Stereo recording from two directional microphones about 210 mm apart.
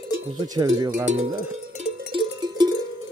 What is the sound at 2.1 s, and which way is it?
Cowbell, 20° right (ahead or behind).